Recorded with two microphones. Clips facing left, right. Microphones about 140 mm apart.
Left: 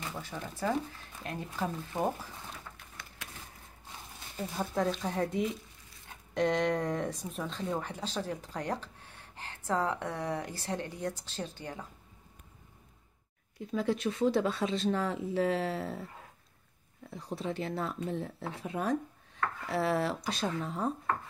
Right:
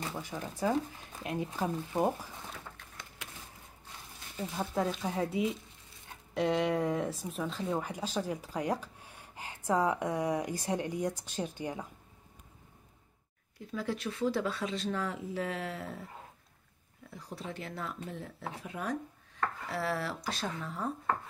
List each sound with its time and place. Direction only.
0.2 s speech: 15° right (ahead or behind)
4.6 s speech: 5° right (ahead or behind)
13.7 s speech: 20° left (ahead or behind)
17.1 s speech: 25° left (ahead or behind)